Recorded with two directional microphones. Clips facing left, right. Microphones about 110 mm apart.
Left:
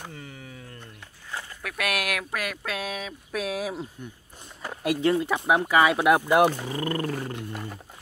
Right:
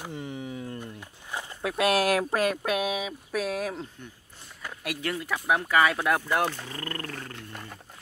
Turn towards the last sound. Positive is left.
turn(degrees=10)  # may be behind; listen again after turning